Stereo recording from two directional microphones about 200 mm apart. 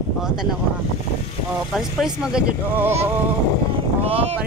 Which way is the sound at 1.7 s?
Centre (ahead or behind).